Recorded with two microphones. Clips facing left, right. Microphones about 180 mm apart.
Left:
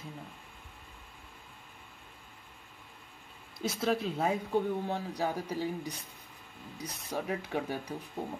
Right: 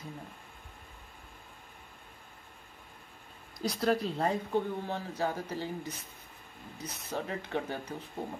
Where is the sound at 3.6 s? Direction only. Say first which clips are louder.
Right 1 dB; centre (ahead or behind).